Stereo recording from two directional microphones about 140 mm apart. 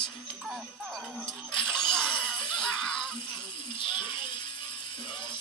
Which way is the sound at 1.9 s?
5° left (ahead or behind).